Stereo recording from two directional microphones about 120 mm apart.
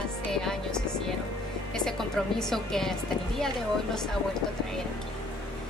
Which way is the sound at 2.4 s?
5° left (ahead or behind).